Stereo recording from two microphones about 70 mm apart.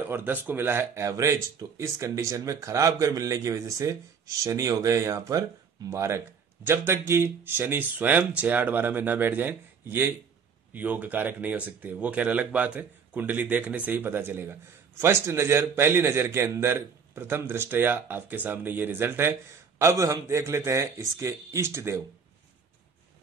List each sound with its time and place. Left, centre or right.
0.0 s speech: right
1.0 s a man's voice: right
19.8 s a man's voice: right